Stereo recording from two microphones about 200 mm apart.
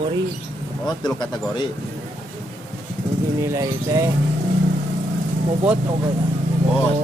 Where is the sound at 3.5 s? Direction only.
15° right (ahead or behind).